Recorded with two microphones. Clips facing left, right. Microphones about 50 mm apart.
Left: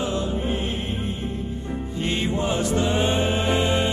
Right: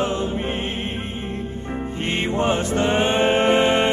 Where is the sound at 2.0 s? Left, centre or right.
Right.